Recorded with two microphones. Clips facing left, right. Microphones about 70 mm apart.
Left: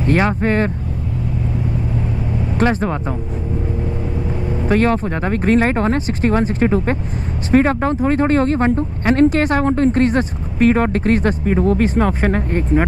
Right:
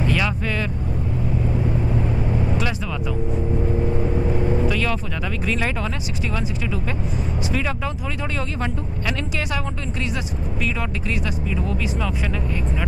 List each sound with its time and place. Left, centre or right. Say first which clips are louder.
0.0 s speech: left 7 dB; left
2.5 s speech: left 8 dB; left
4.6 s speech: left 8 dB; left